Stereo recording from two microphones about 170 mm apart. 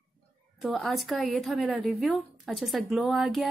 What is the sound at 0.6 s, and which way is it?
A woman's voice, centre (ahead or behind).